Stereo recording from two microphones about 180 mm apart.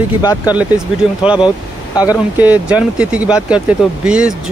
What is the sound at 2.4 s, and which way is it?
Speech, 10° right (ahead or behind).